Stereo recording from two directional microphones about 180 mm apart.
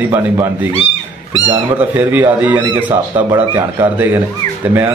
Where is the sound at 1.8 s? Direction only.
10° right (ahead or behind).